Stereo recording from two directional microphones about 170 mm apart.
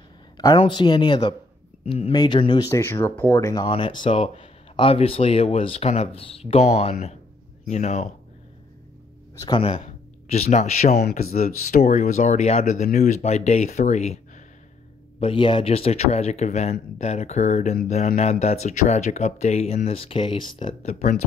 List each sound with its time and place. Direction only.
0.6 s speech: 25° left (ahead or behind)
3.6 s speech: 30° left (ahead or behind)
9.6 s speech: 35° left (ahead or behind)
11.0 s speech: 65° left (ahead or behind)
11.4 s speech: 45° left (ahead or behind)
20.9 s speech: 45° left (ahead or behind)